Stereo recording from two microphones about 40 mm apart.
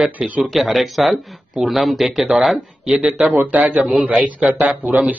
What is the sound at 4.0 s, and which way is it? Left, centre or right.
A man's voice, right.